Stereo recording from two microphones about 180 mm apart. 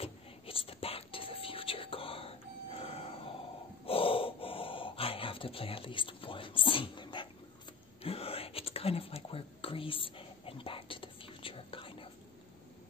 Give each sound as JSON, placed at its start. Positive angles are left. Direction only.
{"t": 0.0, "sound": "whispering", "side_deg": 30}
{"t": 3.8, "sound": "gasp", "side_deg": 30}
{"t": 8.0, "sound": "whispering", "side_deg": 30}